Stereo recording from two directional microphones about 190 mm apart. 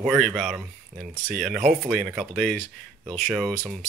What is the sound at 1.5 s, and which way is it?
Speech, 45° right (ahead or behind).